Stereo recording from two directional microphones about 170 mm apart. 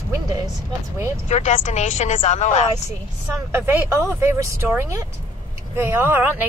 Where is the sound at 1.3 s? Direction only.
45° left (ahead or behind).